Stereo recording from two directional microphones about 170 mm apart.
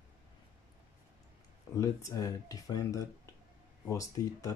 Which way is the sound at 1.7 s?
20° left (ahead or behind).